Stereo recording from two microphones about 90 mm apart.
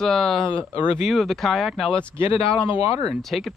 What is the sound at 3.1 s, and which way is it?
Speech, centre (ahead or behind).